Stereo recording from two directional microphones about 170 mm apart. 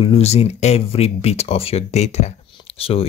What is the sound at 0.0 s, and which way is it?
Speech, 35° left (ahead or behind).